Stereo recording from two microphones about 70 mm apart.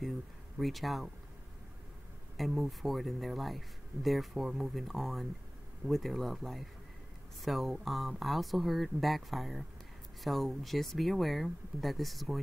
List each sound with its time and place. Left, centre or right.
0.6 s speech: centre
2.3 s speech: centre